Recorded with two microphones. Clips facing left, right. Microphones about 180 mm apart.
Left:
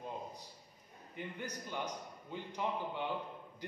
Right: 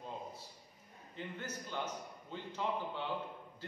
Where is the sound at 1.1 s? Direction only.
15° left (ahead or behind).